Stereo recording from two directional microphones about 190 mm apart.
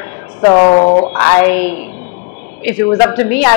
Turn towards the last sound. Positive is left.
turn(degrees=10)  # may be behind; listen again after turning